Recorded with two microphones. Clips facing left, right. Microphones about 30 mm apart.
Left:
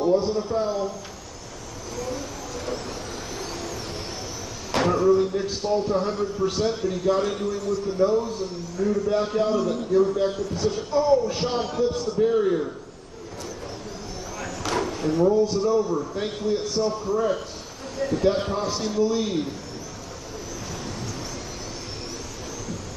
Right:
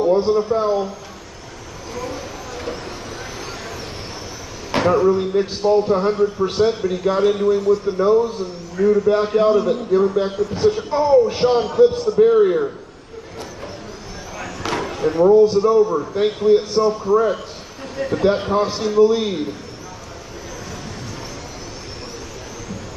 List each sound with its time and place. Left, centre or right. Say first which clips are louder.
0.0 s a man's voice: right 6 dB; right
4.8 s a man's voice: right 4 dB; right
14.4 s a sound: right 2 dB; right
15.4 s a man's voice: right 8 dB; right